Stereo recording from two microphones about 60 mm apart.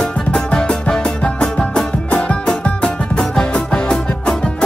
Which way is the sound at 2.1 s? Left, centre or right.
Centre.